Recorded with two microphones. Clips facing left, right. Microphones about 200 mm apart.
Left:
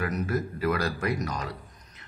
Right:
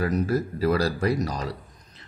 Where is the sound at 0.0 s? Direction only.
35° right (ahead or behind).